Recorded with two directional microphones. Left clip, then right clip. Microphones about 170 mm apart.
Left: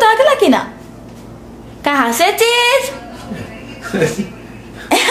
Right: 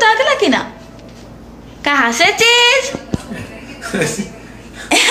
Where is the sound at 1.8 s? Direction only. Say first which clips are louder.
Right 1 dB; 25° left (ahead or behind).